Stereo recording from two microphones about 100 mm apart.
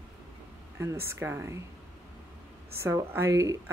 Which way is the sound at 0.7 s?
25° right (ahead or behind).